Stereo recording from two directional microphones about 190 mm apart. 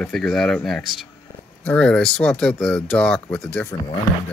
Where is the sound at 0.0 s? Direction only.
5° left (ahead or behind).